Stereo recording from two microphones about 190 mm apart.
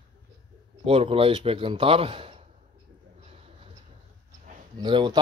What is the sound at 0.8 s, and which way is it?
A man's voice, 30° right (ahead or behind).